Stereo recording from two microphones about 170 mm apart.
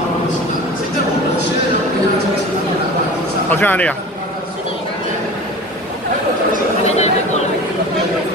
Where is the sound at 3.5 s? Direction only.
10° left (ahead or behind).